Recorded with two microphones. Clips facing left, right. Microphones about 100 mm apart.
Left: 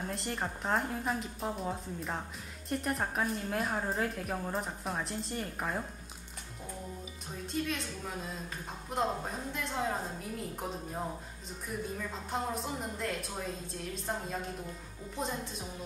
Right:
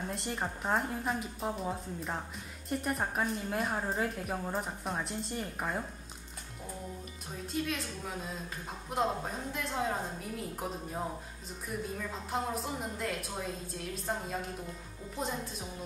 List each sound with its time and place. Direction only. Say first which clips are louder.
0.1 s a woman's voice: even; centre (ahead or behind)
7.4 s a woman's voice: even; centre (ahead or behind)